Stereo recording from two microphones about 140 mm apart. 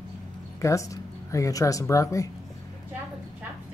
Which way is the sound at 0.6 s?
20° left (ahead or behind).